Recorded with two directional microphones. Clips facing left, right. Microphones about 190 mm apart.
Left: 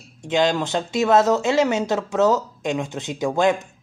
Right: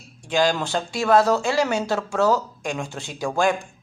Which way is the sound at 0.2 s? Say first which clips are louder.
Left 1 dB; 20° left (ahead or behind).